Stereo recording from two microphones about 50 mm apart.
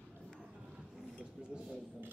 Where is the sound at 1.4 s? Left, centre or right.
Centre.